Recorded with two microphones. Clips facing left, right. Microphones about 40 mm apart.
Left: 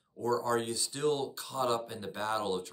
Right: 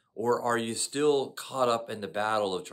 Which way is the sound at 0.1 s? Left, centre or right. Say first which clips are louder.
Right 3 dB; right.